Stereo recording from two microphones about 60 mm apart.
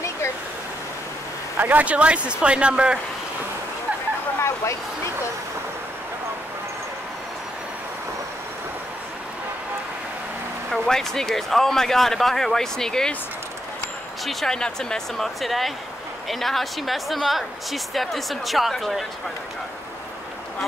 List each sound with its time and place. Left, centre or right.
1.6 s speech: right
4.4 s bow-wow: left
10.7 s speech: centre
14.2 s speech: centre